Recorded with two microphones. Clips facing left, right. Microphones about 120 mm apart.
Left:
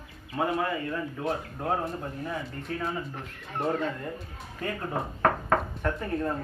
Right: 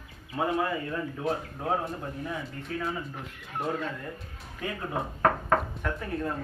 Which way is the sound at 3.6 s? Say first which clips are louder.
Left 3 dB; centre (ahead or behind).